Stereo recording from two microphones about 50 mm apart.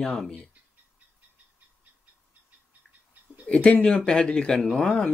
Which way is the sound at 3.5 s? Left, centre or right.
Left.